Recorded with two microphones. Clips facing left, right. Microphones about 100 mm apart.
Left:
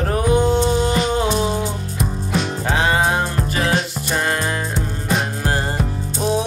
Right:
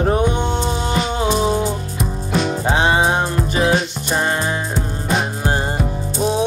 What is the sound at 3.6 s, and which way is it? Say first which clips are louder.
Music: right 3 dB; 5° right (ahead or behind).